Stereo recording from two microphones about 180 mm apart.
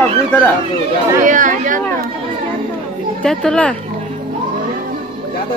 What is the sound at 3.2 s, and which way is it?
Speech, 5° left (ahead or behind).